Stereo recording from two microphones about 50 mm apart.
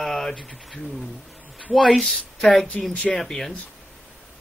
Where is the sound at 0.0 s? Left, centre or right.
Centre.